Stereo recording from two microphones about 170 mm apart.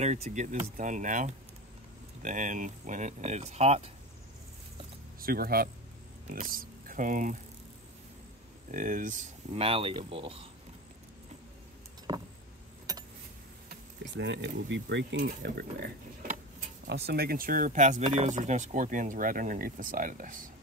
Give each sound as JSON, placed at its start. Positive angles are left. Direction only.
{"t": 0.0, "sound": "speech", "side_deg": -40}
{"t": 5.2, "sound": "speech", "side_deg": -60}
{"t": 8.7, "sound": "speech", "side_deg": -50}
{"t": 9.5, "sound": "speech", "side_deg": -35}
{"t": 12.1, "sound": "vehicle", "side_deg": -25}
{"t": 13.7, "sound": "speech", "side_deg": -90}
{"t": 15.2, "sound": "speech", "side_deg": -65}
{"t": 16.8, "sound": "speech", "side_deg": -80}